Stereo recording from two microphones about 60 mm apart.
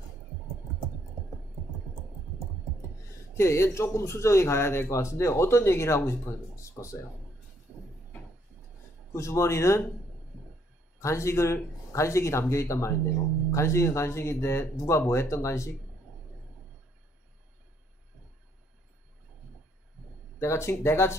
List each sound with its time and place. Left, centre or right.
3.3 s speech: left
6.8 s speech: left
9.1 s speech: left
11.0 s speech: left
20.3 s speech: left